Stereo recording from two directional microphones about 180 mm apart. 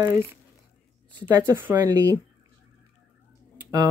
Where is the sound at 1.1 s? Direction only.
25° right (ahead or behind).